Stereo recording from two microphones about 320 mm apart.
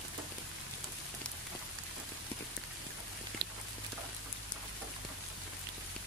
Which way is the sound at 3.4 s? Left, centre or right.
Right.